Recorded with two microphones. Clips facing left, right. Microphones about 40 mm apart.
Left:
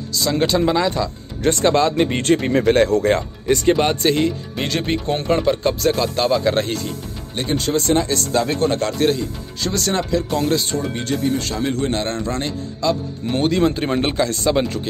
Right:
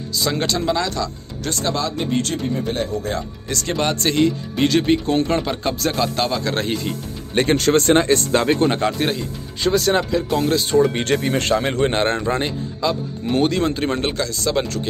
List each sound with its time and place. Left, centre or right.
0.1 s speech: centre
0.4 s speech: centre
1.4 s speech: left
2.5 s speech: left
3.0 s speech: left
3.4 s speech: left
3.7 s speech: centre
7.3 s speech: right
7.8 s speech: right
8.5 s speech: right
8.9 s speech: centre
10.9 s speech: right
12.8 s speech: centre